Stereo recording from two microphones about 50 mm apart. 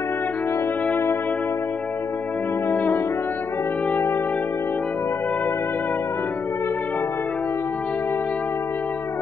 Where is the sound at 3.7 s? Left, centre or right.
Left.